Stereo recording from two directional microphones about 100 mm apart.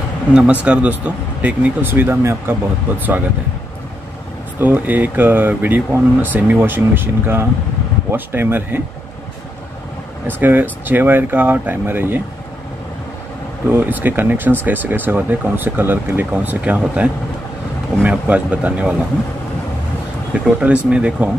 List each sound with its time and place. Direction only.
0.3 s speech: 10° right (ahead or behind)
4.6 s speech: 15° right (ahead or behind)
10.2 s speech: 20° right (ahead or behind)
13.7 s speech: 20° right (ahead or behind)
20.3 s speech: 10° right (ahead or behind)